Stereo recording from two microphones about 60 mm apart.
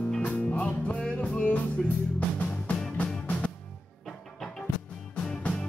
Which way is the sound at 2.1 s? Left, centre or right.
Left.